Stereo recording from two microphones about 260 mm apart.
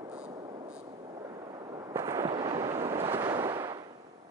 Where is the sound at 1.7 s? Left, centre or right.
Centre.